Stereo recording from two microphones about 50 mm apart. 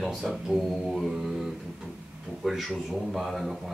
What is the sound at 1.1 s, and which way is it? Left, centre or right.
Mantra, centre.